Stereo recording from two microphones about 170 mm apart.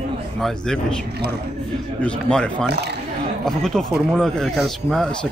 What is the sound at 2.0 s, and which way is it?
Speech, 5° left (ahead or behind).